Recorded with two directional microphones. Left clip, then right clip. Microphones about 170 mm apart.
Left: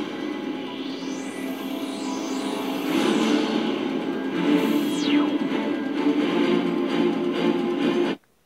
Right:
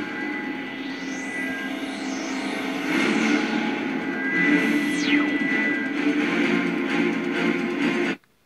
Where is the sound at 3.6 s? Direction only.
5° right (ahead or behind).